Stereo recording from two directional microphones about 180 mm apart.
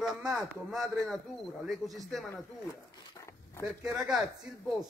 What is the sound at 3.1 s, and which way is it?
Dog, 15° left (ahead or behind).